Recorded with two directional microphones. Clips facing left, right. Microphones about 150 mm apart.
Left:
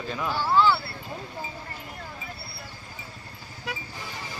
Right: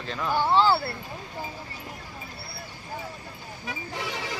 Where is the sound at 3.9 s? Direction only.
80° right.